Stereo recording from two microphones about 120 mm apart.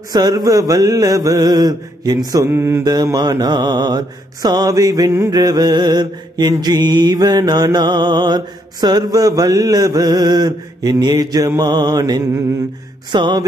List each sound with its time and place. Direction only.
0.1 s mantra: 35° right (ahead or behind)
2.4 s mantra: 20° right (ahead or behind)
2.8 s mantra: 35° right (ahead or behind)
13.1 s mantra: 40° right (ahead or behind)